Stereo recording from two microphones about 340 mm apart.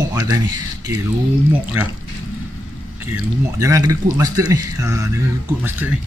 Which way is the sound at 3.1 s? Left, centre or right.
Centre.